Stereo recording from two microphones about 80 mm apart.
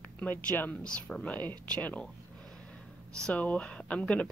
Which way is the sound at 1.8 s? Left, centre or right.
Left.